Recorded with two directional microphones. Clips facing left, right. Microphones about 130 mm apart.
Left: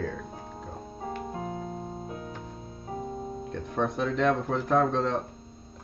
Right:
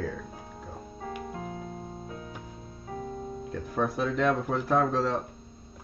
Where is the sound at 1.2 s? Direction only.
30° left (ahead or behind).